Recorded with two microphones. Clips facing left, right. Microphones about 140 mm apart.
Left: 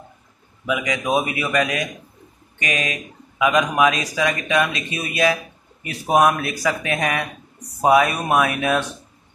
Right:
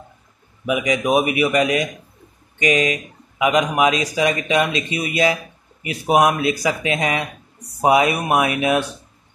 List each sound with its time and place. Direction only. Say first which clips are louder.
0.7 s a man's voice: right 3 dB; 25° right (ahead or behind)